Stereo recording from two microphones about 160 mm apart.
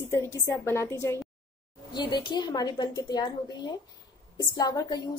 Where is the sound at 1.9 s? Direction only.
30° left (ahead or behind).